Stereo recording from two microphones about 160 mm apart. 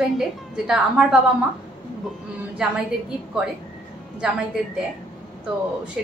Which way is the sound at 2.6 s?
5° right (ahead or behind).